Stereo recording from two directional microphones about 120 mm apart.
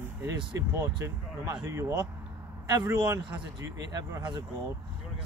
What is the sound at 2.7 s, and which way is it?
A man's voice, 35° right (ahead or behind).